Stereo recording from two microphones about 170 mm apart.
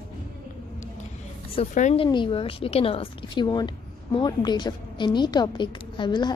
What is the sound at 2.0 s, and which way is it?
A woman's voice, 30° left (ahead or behind).